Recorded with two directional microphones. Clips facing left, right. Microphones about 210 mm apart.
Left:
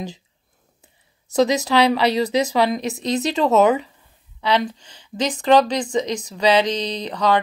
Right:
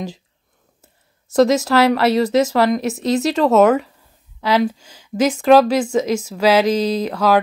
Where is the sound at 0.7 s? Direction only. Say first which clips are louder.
Right 2 dB; centre (ahead or behind).